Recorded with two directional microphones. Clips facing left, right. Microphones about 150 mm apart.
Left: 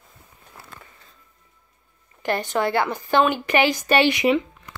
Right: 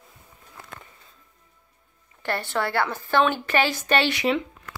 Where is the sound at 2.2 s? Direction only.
15° left (ahead or behind).